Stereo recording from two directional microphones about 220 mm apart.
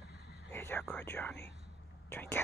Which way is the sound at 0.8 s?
5° left (ahead or behind).